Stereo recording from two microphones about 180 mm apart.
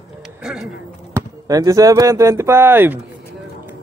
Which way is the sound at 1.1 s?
20° right (ahead or behind).